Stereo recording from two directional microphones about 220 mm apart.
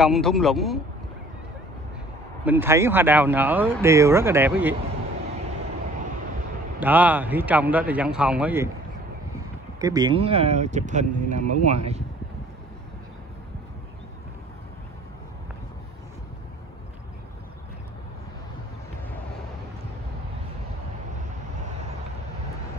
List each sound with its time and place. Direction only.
0.0 s a man's voice: centre (ahead or behind)
2.4 s speech: 10° right (ahead or behind)
6.8 s speech: 10° right (ahead or behind)
9.8 s speech: 15° right (ahead or behind)
21.5 s vehicle: 30° right (ahead or behind)